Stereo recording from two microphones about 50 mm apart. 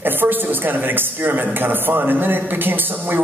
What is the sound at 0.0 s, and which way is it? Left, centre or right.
A woman's voice, right.